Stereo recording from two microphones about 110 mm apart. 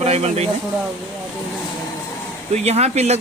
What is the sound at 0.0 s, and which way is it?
Speech, 75° right (ahead or behind).